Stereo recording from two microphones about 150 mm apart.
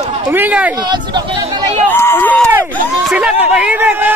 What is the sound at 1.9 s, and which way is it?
Run, 15° left (ahead or behind).